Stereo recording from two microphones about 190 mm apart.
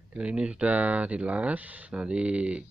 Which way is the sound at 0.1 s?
5° right (ahead or behind).